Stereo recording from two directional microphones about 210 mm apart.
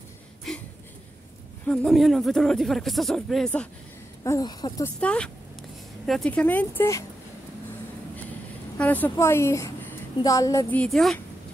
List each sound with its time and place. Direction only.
0.5 s a sound: centre (ahead or behind)
1.7 s speech: centre (ahead or behind)
4.2 s speech: 20° left (ahead or behind)
5.0 s speech: 5° left (ahead or behind)
8.7 s a woman's voice: 10° left (ahead or behind)